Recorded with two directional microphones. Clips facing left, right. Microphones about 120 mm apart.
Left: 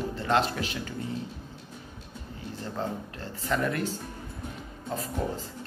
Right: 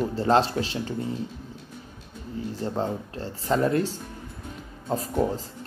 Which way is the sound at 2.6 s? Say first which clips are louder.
Right 4 dB; 30° right (ahead or behind).